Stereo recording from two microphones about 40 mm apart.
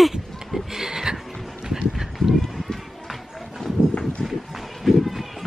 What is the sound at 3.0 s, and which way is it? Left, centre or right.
Music, centre.